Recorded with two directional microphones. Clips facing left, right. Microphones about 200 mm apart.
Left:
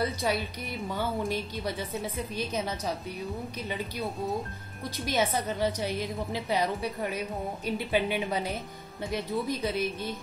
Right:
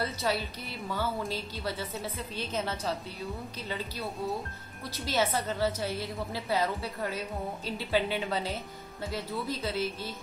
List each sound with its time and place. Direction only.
0.0 s a woman's voice: 15° left (ahead or behind)